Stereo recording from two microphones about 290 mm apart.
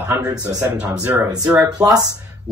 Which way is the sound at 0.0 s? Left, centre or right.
Centre.